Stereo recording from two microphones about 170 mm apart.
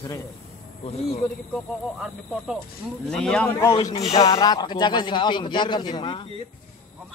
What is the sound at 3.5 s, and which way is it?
A man's voice, 15° left (ahead or behind).